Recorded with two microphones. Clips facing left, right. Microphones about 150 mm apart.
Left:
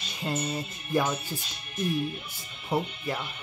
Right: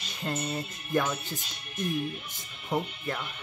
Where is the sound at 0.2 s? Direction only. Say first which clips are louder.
Left 1 dB; 10° left (ahead or behind).